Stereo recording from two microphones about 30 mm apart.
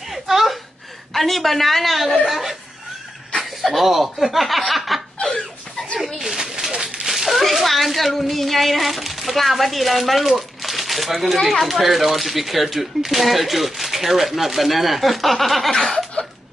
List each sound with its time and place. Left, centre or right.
0.1 s gasp: centre
1.1 s speech: centre
3.3 s snicker: centre
6.2 s a sound: centre
6.6 s a sound: right
7.1 s speech: centre
10.6 s crumpling: centre
11.4 s speech: centre
16.2 s a sound: left